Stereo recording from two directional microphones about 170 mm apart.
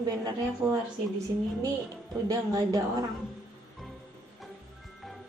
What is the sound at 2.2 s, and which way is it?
Speech, 20° right (ahead or behind).